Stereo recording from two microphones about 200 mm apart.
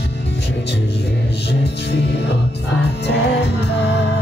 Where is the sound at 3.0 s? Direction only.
55° left (ahead or behind).